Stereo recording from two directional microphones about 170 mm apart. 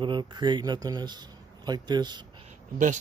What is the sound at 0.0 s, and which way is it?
A man's voice, 25° right (ahead or behind).